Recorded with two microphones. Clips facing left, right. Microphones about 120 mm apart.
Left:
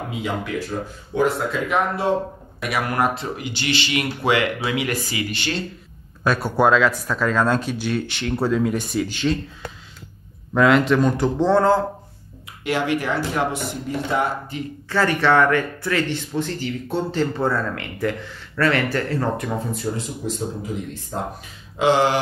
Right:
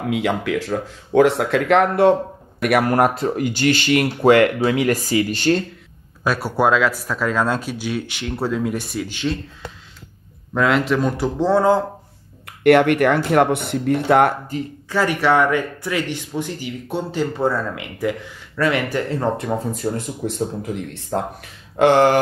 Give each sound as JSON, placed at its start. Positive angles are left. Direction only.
{"t": 0.1, "sound": "speech", "side_deg": -85}
{"t": 2.8, "sound": "speech", "side_deg": -40}
{"t": 6.2, "sound": "speech", "side_deg": -5}
{"t": 12.4, "sound": "speech", "side_deg": -60}
{"t": 14.5, "sound": "speech", "side_deg": -40}
{"t": 14.9, "sound": "speech", "side_deg": -10}
{"t": 20.2, "sound": "speech", "side_deg": -70}